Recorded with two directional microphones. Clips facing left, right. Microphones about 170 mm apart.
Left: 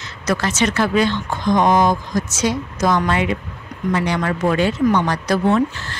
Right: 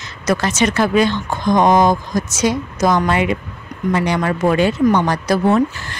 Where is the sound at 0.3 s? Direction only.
15° right (ahead or behind).